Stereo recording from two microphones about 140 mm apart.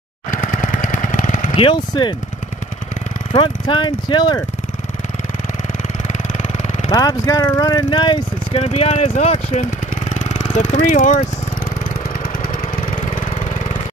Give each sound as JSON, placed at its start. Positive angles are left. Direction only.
{"t": 0.3, "sound": "jackhammer", "side_deg": 70}
{"t": 1.5, "sound": "speech", "side_deg": 40}
{"t": 3.3, "sound": "speech", "side_deg": 35}
{"t": 6.9, "sound": "speech", "side_deg": 25}
{"t": 8.6, "sound": "speech", "side_deg": 50}